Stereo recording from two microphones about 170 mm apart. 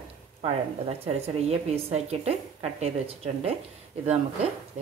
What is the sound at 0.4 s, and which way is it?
A woman's voice, 35° right (ahead or behind).